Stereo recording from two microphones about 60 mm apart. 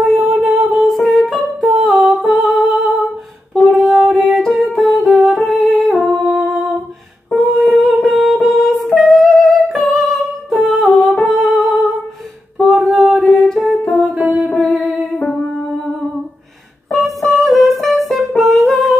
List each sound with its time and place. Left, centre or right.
0.0 s music: centre
5.5 s humming: centre
7.3 s a sound: centre
8.0 s music: centre
12.5 s a sound: centre
13.4 s music: centre
15.0 s music: left
16.9 s music: centre